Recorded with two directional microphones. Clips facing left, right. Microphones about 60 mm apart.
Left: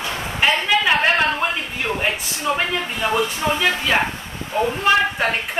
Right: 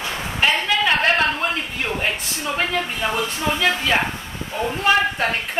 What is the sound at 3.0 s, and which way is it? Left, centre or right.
Speech, left.